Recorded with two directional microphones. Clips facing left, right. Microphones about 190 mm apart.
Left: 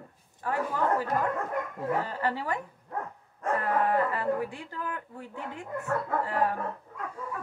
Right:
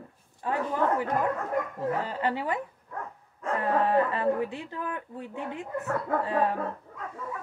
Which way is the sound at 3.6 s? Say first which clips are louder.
Right 3 dB; 20° right (ahead or behind).